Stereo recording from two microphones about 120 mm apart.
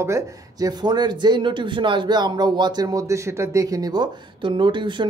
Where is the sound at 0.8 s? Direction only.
35° right (ahead or behind).